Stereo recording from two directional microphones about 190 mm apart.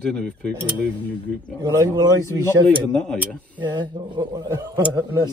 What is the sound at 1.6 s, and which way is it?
Speech, 20° right (ahead or behind).